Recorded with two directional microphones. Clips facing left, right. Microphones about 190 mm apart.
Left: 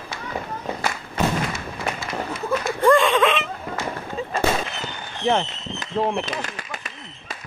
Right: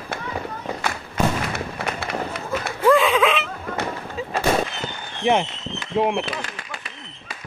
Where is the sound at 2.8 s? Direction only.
5° right (ahead or behind).